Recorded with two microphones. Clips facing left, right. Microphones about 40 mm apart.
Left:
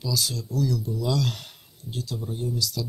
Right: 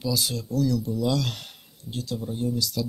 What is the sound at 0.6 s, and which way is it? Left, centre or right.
Speech, centre.